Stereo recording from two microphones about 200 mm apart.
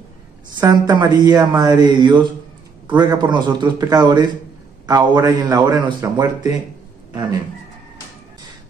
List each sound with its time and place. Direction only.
0.6 s a man's voice: 20° right (ahead or behind)